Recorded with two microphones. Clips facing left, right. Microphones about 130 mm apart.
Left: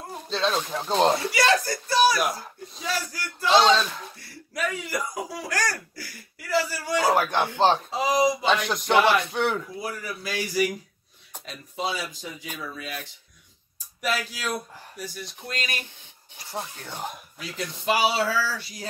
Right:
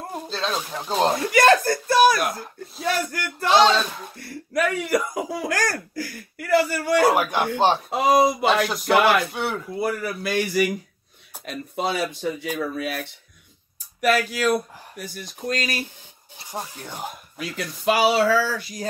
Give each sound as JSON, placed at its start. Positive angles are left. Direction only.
{"t": 0.3, "sound": "speech", "side_deg": 0}
{"t": 1.3, "sound": "speech", "side_deg": -50}
{"t": 2.1, "sound": "speech", "side_deg": 0}
{"t": 2.8, "sound": "speech", "side_deg": -60}
{"t": 7.2, "sound": "speech", "side_deg": -10}
{"t": 7.9, "sound": "speech", "side_deg": -60}
{"t": 8.6, "sound": "speech", "side_deg": -5}
{"t": 9.8, "sound": "speech", "side_deg": -55}
{"t": 16.4, "sound": "speech", "side_deg": -15}
{"t": 17.4, "sound": "speech", "side_deg": -60}